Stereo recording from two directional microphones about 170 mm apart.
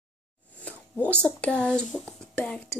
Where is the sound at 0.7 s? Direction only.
5° left (ahead or behind).